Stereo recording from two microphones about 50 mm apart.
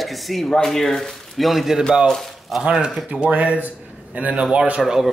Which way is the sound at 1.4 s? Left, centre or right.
Centre.